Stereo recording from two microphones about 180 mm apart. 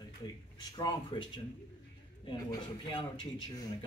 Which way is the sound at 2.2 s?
25° left (ahead or behind).